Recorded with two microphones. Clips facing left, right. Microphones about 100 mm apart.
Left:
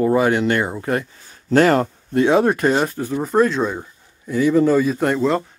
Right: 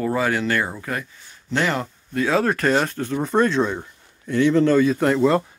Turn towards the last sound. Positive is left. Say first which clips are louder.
# right 1 dB
turn(degrees=0)  # may be behind; listen again after turning